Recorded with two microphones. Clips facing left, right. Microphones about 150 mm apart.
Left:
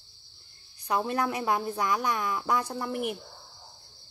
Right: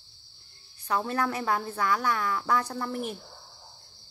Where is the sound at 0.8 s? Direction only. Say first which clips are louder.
Even; 15° left (ahead or behind).